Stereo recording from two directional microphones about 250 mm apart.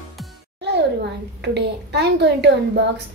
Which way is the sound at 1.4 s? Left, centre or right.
Right.